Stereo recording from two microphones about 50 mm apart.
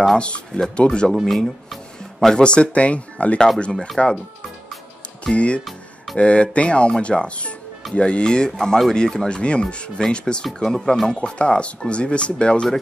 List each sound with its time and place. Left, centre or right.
0.6 s speech: centre
1.2 s music: centre
2.3 s speech: centre
5.2 s speech: left